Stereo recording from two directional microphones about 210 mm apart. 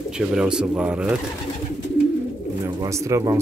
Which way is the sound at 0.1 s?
5° right (ahead or behind).